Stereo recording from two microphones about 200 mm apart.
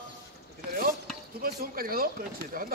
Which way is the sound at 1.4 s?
50° right (ahead or behind).